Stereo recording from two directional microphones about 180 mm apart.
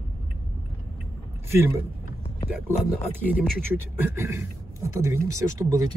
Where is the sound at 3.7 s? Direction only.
15° right (ahead or behind).